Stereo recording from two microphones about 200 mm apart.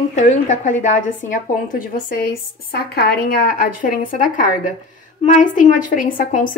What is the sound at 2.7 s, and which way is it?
Speech, 50° left (ahead or behind).